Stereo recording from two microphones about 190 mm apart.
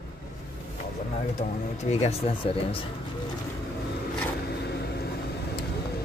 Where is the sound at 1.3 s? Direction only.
35° left (ahead or behind).